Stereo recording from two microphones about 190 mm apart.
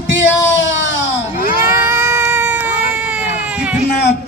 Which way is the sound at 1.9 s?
15° right (ahead or behind).